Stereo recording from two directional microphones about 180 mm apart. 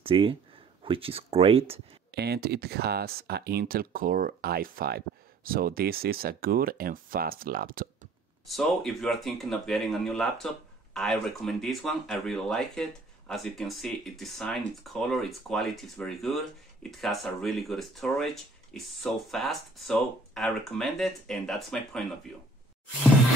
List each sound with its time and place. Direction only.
0.0 s speech: 30° right (ahead or behind)
2.1 s speech: 65° right (ahead or behind)
8.5 s speech: centre (ahead or behind)